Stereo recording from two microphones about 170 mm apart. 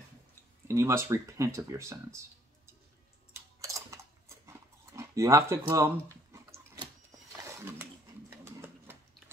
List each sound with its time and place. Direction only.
0.7 s speech: 15° right (ahead or behind)
3.6 s a sound: 15° right (ahead or behind)
6.3 s dog: 15° right (ahead or behind)
7.3 s roaring cats: 15° right (ahead or behind)
8.5 s sewing machine: 15° right (ahead or behind)